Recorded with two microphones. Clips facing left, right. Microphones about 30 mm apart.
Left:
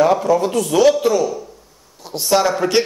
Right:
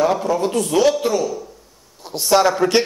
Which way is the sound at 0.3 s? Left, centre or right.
Centre.